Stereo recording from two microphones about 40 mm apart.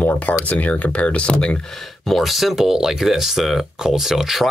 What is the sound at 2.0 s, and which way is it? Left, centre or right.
Speech, centre.